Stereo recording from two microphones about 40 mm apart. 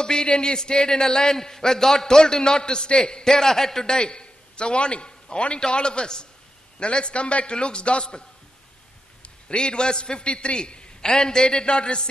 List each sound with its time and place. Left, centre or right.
0.0 s a man's voice: centre
3.8 s a man's voice: left